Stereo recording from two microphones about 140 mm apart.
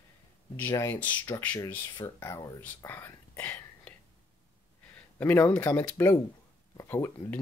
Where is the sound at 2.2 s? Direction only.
20° left (ahead or behind).